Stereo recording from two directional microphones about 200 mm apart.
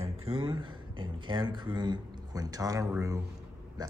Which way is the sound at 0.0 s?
30° right (ahead or behind).